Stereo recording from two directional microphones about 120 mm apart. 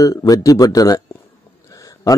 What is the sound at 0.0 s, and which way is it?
Speech, 30° left (ahead or behind).